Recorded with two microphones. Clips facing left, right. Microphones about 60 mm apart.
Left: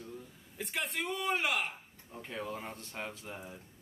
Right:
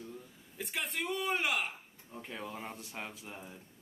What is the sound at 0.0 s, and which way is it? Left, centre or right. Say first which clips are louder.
Speech: left 1 dB; centre.